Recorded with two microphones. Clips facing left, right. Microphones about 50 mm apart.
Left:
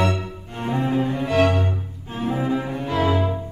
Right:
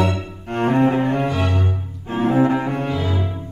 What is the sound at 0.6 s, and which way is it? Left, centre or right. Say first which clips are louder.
Cello: right 5 dB; right.